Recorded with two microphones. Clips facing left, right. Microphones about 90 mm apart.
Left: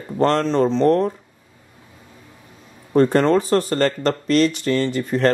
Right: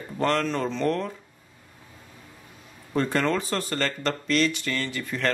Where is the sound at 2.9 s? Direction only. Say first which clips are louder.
Left 9 dB; 40° left (ahead or behind).